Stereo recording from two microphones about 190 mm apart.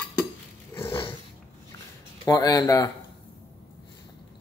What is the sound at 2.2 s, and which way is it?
Speech, 20° left (ahead or behind).